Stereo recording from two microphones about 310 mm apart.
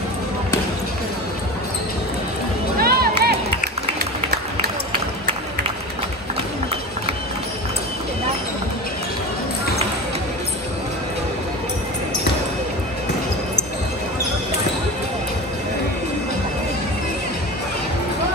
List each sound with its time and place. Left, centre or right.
2.8 s music: right